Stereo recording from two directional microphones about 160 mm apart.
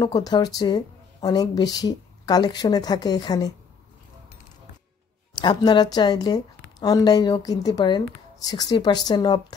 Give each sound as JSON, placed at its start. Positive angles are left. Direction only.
{"t": 0.0, "sound": "a woman's voice", "side_deg": 25}
{"t": 5.4, "sound": "a woman's voice", "side_deg": 25}